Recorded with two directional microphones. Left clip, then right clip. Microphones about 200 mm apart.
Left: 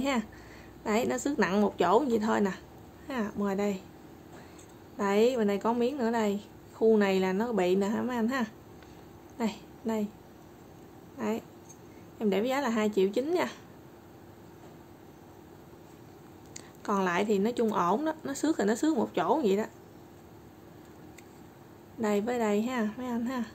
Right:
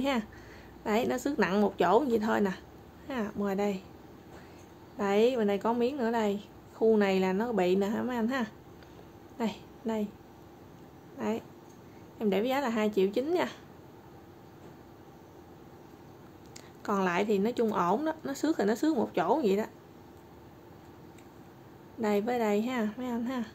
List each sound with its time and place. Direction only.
0.0 s a woman's voice: centre (ahead or behind)
4.9 s a woman's voice: 5° left (ahead or behind)
11.1 s a woman's voice: 5° left (ahead or behind)
16.8 s a woman's voice: 5° left (ahead or behind)
22.0 s a woman's voice: centre (ahead or behind)